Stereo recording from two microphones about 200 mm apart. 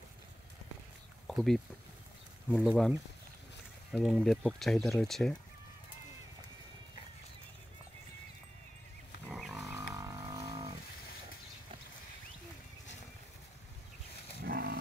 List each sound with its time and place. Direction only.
1.2 s a sound: centre (ahead or behind)
2.5 s speech: centre (ahead or behind)
9.3 s wild animals: centre (ahead or behind)
9.9 s vehicle: 15° right (ahead or behind)
14.4 s livestock: 55° right (ahead or behind)